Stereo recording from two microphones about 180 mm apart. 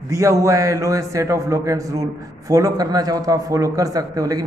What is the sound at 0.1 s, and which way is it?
A man's voice, 15° right (ahead or behind).